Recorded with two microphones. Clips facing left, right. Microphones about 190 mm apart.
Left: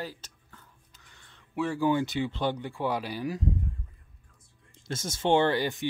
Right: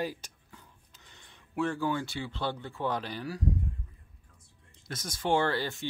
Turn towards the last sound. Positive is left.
turn(degrees=15)  # may be behind; listen again after turning